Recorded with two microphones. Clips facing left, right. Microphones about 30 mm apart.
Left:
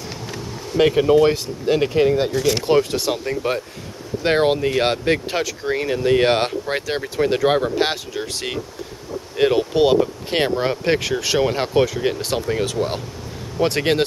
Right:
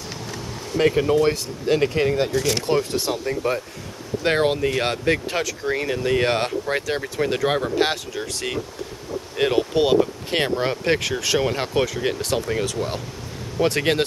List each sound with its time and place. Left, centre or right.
0.7 s speech: centre
1.7 s speech: centre
2.6 s speech: left
3.4 s speech: left
4.2 s speech: centre
6.1 s speech: left
9.1 s speech: centre